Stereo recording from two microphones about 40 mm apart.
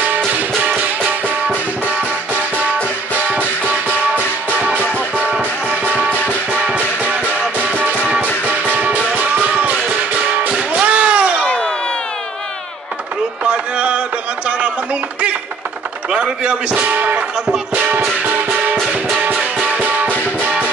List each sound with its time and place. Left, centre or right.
3.2 s music: right
5.9 s music: right
8.5 s music: right
10.8 s a sound: right
13.4 s a sound: right
16.1 s chop: right
19.2 s music: right